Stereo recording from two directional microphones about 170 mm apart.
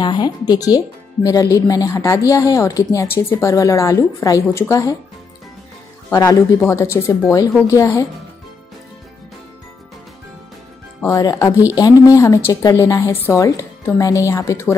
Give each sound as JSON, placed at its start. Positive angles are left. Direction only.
{"t": 0.0, "sound": "speech", "side_deg": 25}
{"t": 6.1, "sound": "speech", "side_deg": 20}
{"t": 11.0, "sound": "speech", "side_deg": 20}